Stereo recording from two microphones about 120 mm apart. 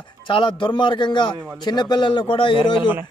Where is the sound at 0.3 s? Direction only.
45° left (ahead or behind).